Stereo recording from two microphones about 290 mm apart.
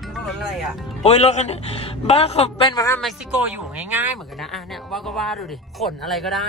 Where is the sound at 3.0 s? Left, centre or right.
Centre.